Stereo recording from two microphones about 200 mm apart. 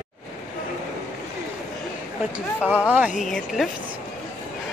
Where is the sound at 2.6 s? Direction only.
10° left (ahead or behind).